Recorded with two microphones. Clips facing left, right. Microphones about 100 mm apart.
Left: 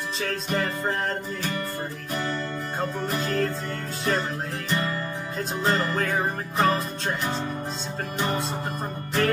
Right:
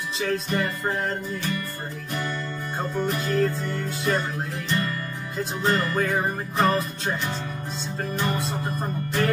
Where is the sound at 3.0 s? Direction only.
Centre (ahead or behind).